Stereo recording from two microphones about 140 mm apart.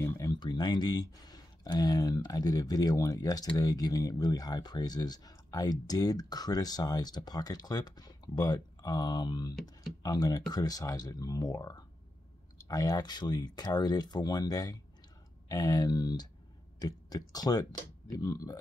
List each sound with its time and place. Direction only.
0.0 s speech: 25° left (ahead or behind)